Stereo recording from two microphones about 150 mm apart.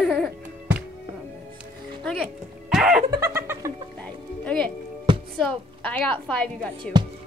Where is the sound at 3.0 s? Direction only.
20° right (ahead or behind).